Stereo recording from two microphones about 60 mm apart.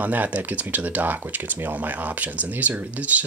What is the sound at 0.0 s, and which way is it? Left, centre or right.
Speech, right.